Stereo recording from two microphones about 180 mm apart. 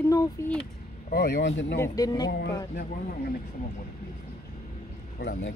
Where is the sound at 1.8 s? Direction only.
20° left (ahead or behind).